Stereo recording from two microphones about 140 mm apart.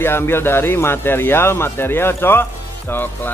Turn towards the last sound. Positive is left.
turn(degrees=15)  # may be behind; listen again after turning